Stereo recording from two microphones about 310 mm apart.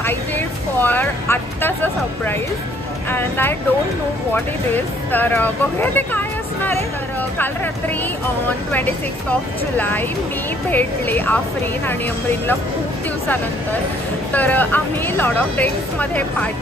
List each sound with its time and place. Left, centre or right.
0.7 s speech: centre
8.5 s speech: centre
14.3 s speech: centre